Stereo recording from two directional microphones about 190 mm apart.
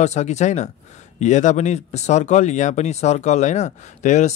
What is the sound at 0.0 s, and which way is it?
Speech, 35° left (ahead or behind).